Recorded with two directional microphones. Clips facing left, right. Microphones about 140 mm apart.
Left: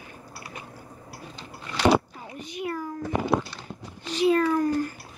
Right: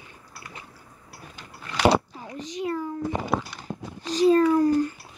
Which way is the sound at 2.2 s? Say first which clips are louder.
Right 3 dB; 30° right (ahead or behind).